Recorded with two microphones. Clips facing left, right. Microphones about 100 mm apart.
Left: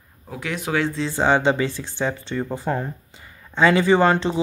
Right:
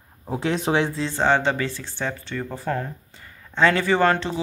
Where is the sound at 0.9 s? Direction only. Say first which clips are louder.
Left 1 dB; 5° left (ahead or behind).